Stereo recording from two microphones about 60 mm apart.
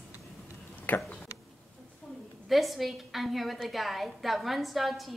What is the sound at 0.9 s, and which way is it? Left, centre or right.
Speech, left.